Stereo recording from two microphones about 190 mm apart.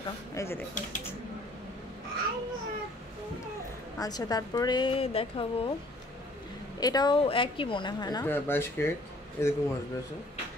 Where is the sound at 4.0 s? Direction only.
20° left (ahead or behind).